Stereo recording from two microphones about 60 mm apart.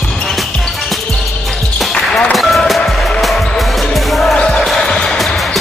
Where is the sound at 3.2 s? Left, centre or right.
Centre.